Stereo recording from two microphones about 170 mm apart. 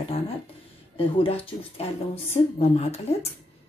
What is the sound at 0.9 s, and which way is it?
Speech, 35° left (ahead or behind).